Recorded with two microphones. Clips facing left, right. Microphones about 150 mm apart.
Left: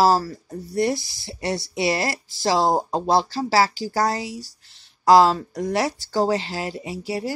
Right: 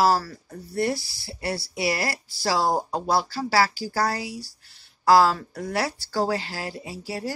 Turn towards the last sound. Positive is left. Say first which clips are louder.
# left 4 dB
turn(degrees=15)  # may be behind; listen again after turning